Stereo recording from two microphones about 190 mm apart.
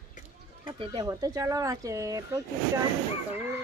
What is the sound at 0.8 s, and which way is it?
Speech, 25° right (ahead or behind).